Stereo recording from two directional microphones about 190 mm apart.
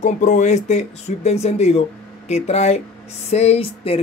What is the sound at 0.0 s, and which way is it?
Speech, 40° left (ahead or behind).